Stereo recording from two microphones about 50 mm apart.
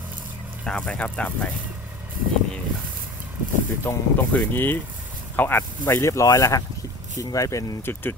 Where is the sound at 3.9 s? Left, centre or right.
Left.